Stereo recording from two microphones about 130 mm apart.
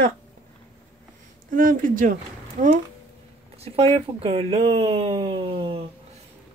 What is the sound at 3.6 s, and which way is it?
Speech, 50° right (ahead or behind).